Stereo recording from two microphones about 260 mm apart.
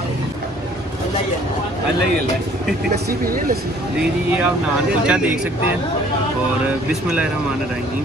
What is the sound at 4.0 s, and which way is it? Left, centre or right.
Speech, centre.